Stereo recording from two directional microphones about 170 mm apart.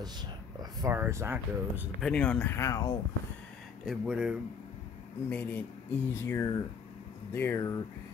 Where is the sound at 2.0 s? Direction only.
5° left (ahead or behind).